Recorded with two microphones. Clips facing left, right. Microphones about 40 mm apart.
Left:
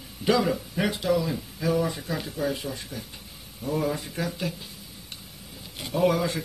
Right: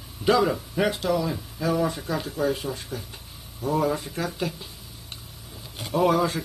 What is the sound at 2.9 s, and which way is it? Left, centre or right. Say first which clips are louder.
Speech: right 3 dB; right.